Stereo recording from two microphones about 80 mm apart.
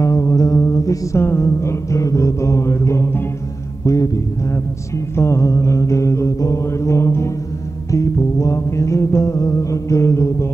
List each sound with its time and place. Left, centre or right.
0.0 s music: left
3.8 s mantra: left
7.9 s music: left